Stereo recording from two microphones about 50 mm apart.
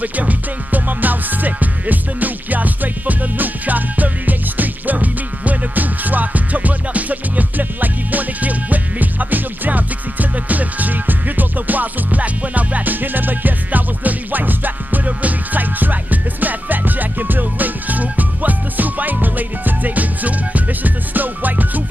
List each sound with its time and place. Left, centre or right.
0.0 s music: right